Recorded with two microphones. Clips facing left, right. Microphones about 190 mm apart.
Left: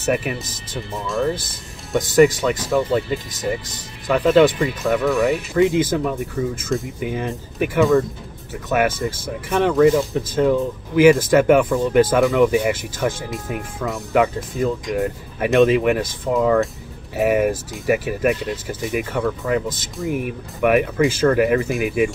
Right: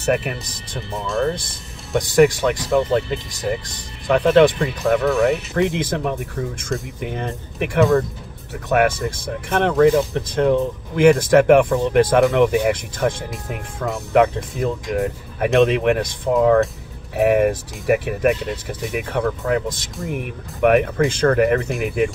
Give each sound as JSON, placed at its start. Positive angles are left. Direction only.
{"t": 0.0, "sound": "speech", "side_deg": 0}